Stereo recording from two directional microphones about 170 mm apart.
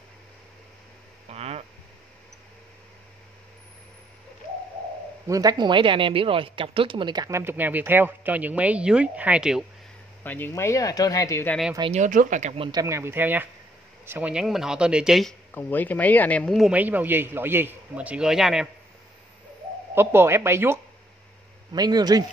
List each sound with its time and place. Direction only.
1.3 s a sound: 40° right (ahead or behind)
5.2 s speech: 20° right (ahead or behind); by 9.7 s 5° right (ahead or behind)
10.2 s speech: 10° left (ahead or behind)
11.9 s speech: 50° right (ahead or behind)
12.6 s speech: 20° right (ahead or behind); by 15.3 s centre (ahead or behind)
15.5 s speech: 10° left (ahead or behind)
19.9 s speech: 15° right (ahead or behind)